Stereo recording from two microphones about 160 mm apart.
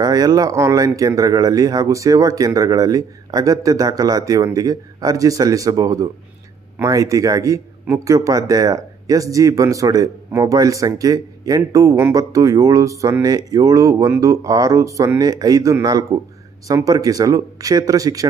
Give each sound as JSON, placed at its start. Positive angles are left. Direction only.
{"t": 0.0, "sound": "speech", "side_deg": -25}